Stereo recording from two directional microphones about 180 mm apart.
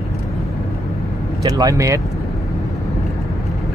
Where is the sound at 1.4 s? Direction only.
20° right (ahead or behind).